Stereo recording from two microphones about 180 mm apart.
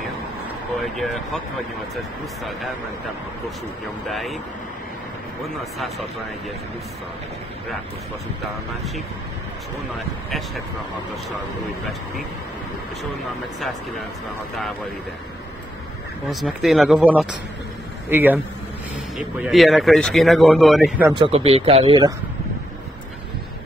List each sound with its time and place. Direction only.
0.7 s speech: centre (ahead or behind)
4.1 s speech: centre (ahead or behind)
16.3 s speech: centre (ahead or behind)
21.1 s a man's voice: 30° right (ahead or behind)